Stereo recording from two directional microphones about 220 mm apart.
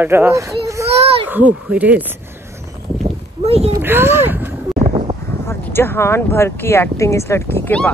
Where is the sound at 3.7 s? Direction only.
10° right (ahead or behind).